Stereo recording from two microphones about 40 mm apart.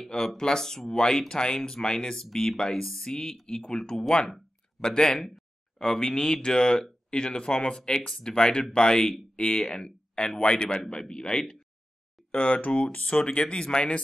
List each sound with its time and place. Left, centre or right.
0.4 s speech: centre
12.3 s speech: left